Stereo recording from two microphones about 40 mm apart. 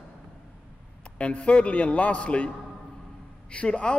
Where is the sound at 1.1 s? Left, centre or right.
Left.